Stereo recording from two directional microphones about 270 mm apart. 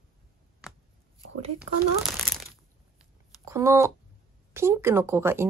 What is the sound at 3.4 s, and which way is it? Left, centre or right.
Speech, centre.